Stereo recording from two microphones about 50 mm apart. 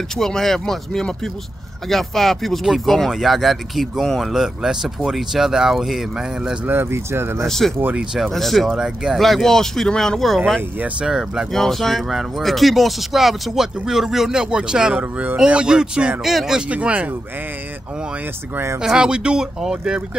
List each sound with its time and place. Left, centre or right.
0.1 s speech: centre
6.6 s speech: right
6.9 s speech: right
7.4 s speech: centre
8.7 s speech: centre
9.2 s speech: centre
11.0 s speech: centre
11.5 s speech: centre
15.0 s speech: right
15.3 s speech: centre
16.6 s speech: right
18.8 s speech: centre